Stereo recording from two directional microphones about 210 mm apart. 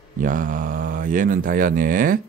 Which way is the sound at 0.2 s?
40° right (ahead or behind).